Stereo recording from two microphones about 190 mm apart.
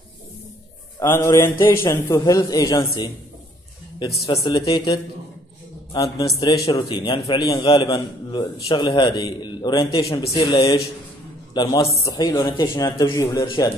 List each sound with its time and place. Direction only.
0.9 s a man's voice: 15° left (ahead or behind)
4.3 s a man's voice: 25° left (ahead or behind)